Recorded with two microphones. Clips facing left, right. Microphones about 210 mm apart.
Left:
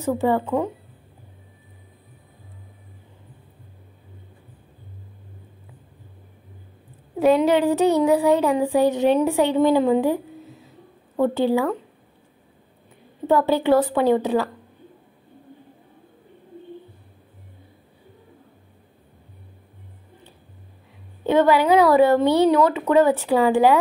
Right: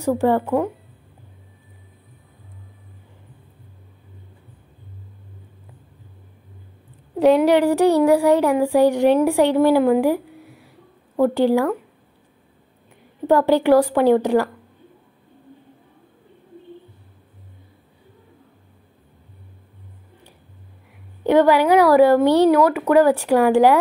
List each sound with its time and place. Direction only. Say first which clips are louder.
0.2 s a woman's voice: right 2 dB; 10° right (ahead or behind)
7.2 s a woman's voice: right 2 dB; 15° right (ahead or behind)
7.5 s a sound: right 2 dB; 15° left (ahead or behind)
7.9 s a woman's voice: right 2 dB; 15° right (ahead or behind)
13.3 s a woman's voice: right 3 dB; 15° right (ahead or behind)
21.2 s a woman's voice: right 2 dB; 15° right (ahead or behind)